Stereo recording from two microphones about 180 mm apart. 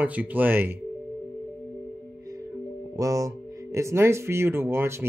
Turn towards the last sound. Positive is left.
turn(degrees=-15)  # may be behind; listen again after turning